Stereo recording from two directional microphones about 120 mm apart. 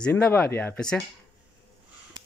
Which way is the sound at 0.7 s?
5° left (ahead or behind).